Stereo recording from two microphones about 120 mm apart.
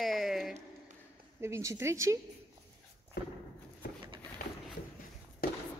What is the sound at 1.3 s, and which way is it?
Speech, 25° right (ahead or behind).